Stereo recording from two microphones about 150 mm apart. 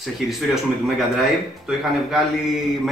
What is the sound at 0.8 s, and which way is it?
A man's voice, centre (ahead or behind).